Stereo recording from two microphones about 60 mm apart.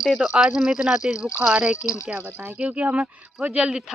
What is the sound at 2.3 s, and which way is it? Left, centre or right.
Speech, right.